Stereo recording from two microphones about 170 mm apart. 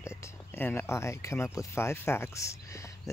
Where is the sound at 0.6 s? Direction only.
15° left (ahead or behind).